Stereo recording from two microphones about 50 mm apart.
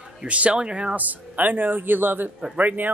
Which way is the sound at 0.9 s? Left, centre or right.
Right.